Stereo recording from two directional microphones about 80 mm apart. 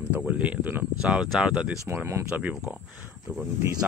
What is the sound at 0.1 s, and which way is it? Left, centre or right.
Speech, centre.